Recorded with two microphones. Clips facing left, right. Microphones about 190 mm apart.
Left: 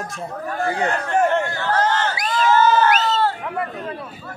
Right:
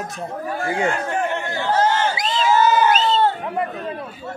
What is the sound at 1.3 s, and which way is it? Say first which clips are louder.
Chatter: left 1 dB; 15° right (ahead or behind).